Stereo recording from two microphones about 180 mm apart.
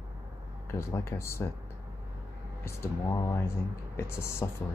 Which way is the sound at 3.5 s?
15° left (ahead or behind).